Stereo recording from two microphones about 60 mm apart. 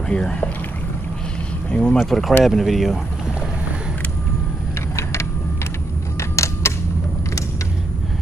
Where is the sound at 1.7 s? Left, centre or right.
Centre.